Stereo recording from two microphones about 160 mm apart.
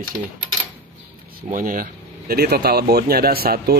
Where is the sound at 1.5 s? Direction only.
60° right (ahead or behind).